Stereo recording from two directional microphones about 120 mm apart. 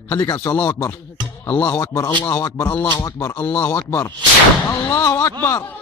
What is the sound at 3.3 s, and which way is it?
Speech, 10° left (ahead or behind).